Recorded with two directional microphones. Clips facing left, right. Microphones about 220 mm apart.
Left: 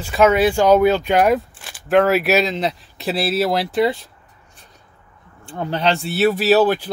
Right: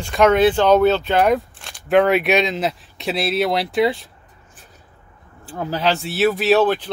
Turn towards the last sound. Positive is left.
turn(degrees=5)  # may be behind; listen again after turning